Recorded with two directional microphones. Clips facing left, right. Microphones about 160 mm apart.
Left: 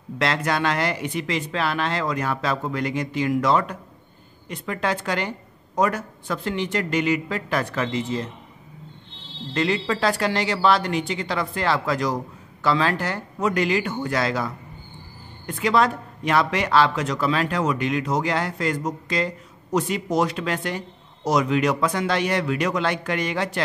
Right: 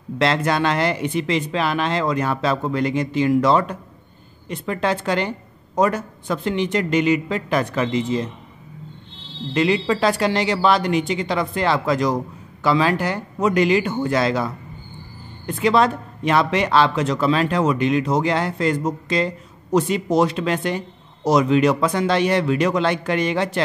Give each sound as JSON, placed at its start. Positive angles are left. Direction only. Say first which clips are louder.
{"t": 0.2, "sound": "speech", "louder": "right 4 dB", "side_deg": -25}
{"t": 9.5, "sound": "speech", "louder": "right 4 dB", "side_deg": -15}